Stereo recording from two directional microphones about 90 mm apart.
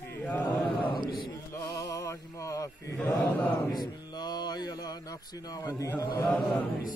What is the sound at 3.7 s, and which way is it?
Speech, 50° left (ahead or behind).